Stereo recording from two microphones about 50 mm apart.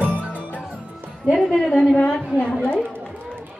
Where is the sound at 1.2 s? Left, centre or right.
Centre.